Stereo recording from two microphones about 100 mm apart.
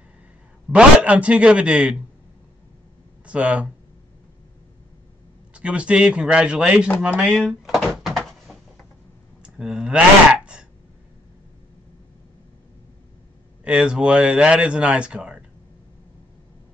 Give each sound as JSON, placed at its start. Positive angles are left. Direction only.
{"t": 0.7, "sound": "speech", "side_deg": -10}
{"t": 3.3, "sound": "speech", "side_deg": -10}
{"t": 5.5, "sound": "speech", "side_deg": -10}
{"t": 7.2, "sound": "door", "side_deg": 0}
{"t": 9.4, "sound": "a sound", "side_deg": -5}
{"t": 13.7, "sound": "speech", "side_deg": -5}